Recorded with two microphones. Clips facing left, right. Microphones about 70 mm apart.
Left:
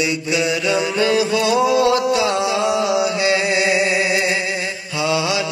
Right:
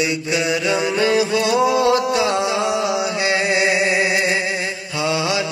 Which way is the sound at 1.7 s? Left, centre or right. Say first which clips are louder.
Left 1 dB; right.